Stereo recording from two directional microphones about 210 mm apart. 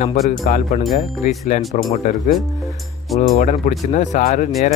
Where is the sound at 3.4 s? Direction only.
35° left (ahead or behind).